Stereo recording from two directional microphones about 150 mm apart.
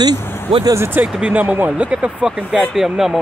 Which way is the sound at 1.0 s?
5° right (ahead or behind).